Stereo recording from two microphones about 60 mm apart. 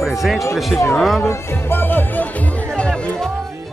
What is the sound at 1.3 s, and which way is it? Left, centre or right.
Music, left.